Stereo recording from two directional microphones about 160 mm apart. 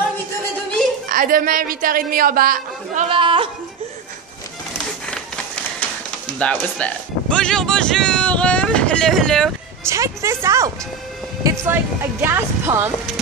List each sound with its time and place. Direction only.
1.0 s a woman's voice: 60° right (ahead or behind)
3.1 s speech: 30° right (ahead or behind)
5.0 s a sound: 5° left (ahead or behind)
6.3 s speech: 10° left (ahead or behind)
9.8 s a woman's voice: 20° right (ahead or behind)